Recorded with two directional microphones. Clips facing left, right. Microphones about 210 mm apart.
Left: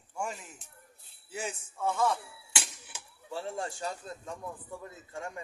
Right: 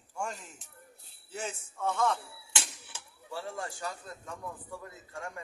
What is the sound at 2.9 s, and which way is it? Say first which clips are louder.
A man's voice: left 2 dB; 25° left (ahead or behind).